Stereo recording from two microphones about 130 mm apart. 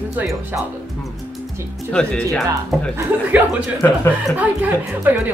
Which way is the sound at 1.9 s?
5° left (ahead or behind).